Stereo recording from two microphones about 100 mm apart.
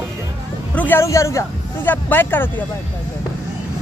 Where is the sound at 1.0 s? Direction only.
30° left (ahead or behind).